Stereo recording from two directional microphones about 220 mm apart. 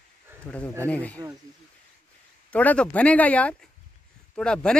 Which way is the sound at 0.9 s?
5° left (ahead or behind).